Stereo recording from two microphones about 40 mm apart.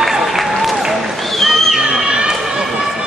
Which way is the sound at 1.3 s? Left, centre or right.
Centre.